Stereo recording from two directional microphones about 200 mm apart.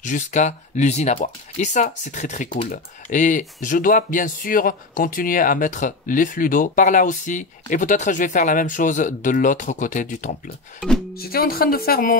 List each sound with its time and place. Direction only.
0.0 s speech: 40° left (ahead or behind)